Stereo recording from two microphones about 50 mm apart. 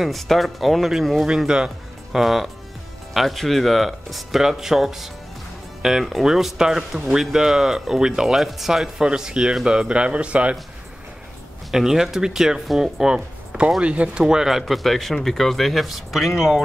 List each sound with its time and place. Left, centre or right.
0.0 s speech: centre
1.2 s speech: centre
2.1 s a man's voice: centre; by 10.5 s right
11.7 s speech: centre
14.6 s speech: centre